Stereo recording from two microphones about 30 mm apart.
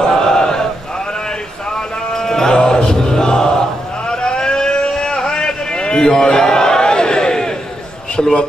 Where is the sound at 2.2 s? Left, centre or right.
Centre.